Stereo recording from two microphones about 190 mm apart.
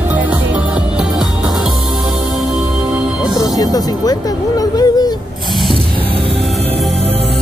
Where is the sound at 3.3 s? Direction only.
20° left (ahead or behind).